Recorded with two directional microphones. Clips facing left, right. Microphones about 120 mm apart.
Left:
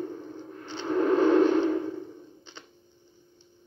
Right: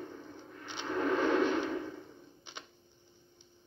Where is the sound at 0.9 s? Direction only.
45° left (ahead or behind).